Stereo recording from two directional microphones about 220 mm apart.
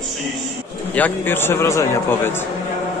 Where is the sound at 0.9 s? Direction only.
10° left (ahead or behind).